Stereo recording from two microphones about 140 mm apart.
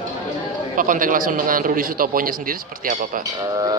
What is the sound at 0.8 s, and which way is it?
A man's voice, 70° right (ahead or behind).